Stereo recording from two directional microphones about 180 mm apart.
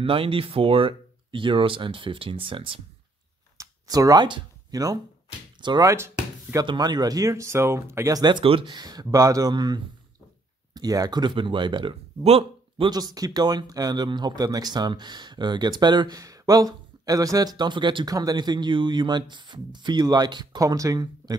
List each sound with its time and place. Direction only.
0.0 s speech: 30° right (ahead or behind)
3.5 s a sound: 20° right (ahead or behind)
5.6 s speech: 20° right (ahead or behind)